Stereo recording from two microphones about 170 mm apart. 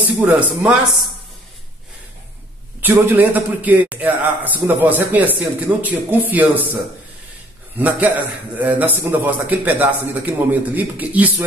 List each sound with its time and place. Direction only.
0.2 s a man's voice: 10° right (ahead or behind)
2.8 s a man's voice: 10° right (ahead or behind)
8.5 s a man's voice: 10° right (ahead or behind)